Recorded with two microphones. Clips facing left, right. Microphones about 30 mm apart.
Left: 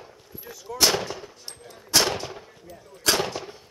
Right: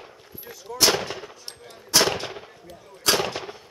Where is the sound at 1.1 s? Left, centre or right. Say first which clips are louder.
Right 1 dB; right.